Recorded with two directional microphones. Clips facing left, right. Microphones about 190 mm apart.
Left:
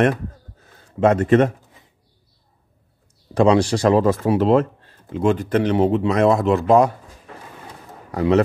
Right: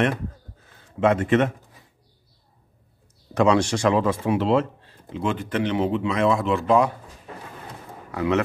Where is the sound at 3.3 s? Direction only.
30° left (ahead or behind).